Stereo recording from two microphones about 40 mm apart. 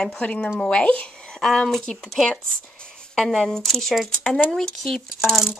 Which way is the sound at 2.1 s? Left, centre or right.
Centre.